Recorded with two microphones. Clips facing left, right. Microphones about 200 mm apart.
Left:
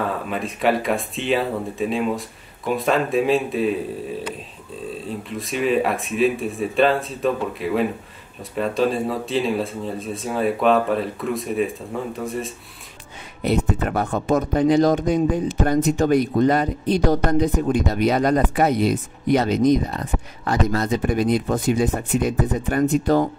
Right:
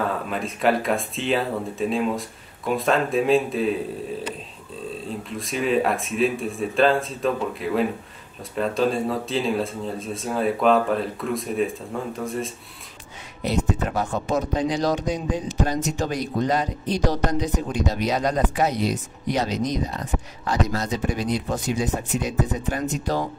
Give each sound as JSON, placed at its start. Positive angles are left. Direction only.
{"t": 0.3, "sound": "speech", "side_deg": 0}
{"t": 5.4, "sound": "speech", "side_deg": 0}
{"t": 13.4, "sound": "a man's voice", "side_deg": 55}